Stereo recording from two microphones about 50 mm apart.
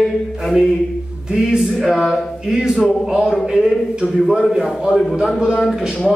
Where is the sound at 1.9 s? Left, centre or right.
Centre.